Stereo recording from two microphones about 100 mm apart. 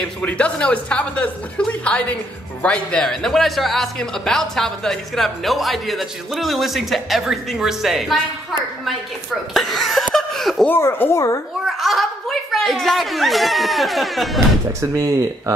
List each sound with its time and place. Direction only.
0.2 s speech: 10° left (ahead or behind)
9.5 s speech: centre (ahead or behind)
10.1 s laughter: 5° left (ahead or behind)
10.7 s a child's voice: 20° left (ahead or behind)
11.6 s speech: centre (ahead or behind)
14.8 s speech: 30° right (ahead or behind)